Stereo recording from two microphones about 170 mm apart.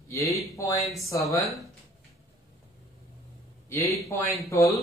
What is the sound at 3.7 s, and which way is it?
Speech, 15° left (ahead or behind).